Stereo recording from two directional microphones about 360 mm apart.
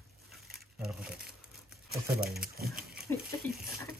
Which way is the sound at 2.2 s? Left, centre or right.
Right.